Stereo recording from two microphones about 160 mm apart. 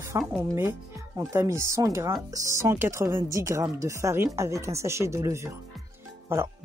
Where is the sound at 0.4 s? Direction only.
15° right (ahead or behind).